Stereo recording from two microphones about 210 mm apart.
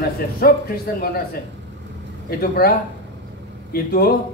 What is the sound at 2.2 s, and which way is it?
Speech, 45° left (ahead or behind).